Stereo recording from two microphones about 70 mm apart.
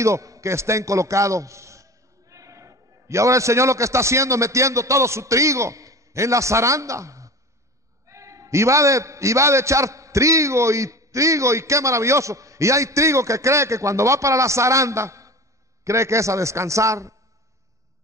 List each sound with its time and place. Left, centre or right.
0.0 s a man's voice: right